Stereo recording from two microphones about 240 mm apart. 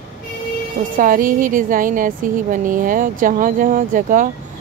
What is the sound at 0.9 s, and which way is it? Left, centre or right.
Speech, right.